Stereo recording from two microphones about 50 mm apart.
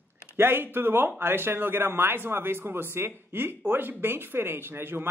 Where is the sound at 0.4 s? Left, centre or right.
Right.